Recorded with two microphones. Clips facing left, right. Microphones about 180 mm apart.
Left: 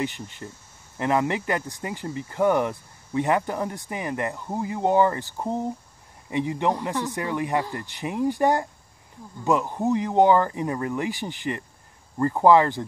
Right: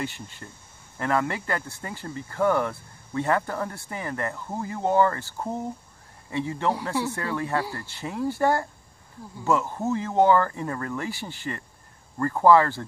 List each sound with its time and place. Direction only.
0.0 s speech: 20° left (ahead or behind)